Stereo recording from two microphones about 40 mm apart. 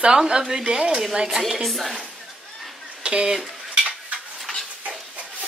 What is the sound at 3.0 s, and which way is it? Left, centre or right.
Speech, right.